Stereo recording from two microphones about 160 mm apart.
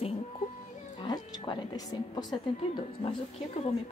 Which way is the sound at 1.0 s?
30° left (ahead or behind).